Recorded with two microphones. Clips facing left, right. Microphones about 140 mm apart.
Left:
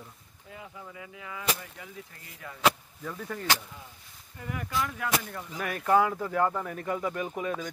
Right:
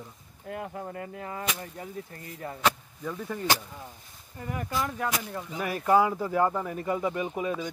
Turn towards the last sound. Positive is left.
turn(degrees=-5)  # may be behind; listen again after turning